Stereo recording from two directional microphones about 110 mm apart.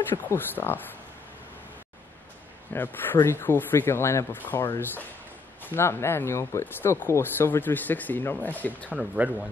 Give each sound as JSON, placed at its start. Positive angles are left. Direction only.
{"t": 0.1, "sound": "speech", "side_deg": 20}
{"t": 2.7, "sound": "speech", "side_deg": 20}
{"t": 8.9, "sound": "speech", "side_deg": -5}